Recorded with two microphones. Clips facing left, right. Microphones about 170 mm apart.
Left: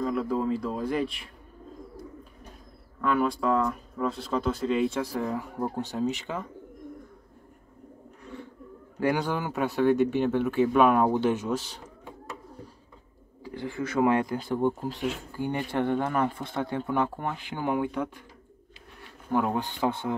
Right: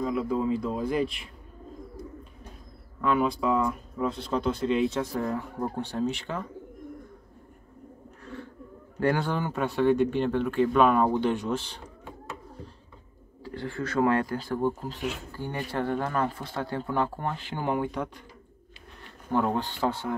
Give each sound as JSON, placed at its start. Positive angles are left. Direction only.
{"t": 0.0, "sound": "speech", "side_deg": 0}
{"t": 3.0, "sound": "speech", "side_deg": 0}
{"t": 9.0, "sound": "speech", "side_deg": 10}
{"t": 13.4, "sound": "speech", "side_deg": 15}
{"t": 19.3, "sound": "speech", "side_deg": 10}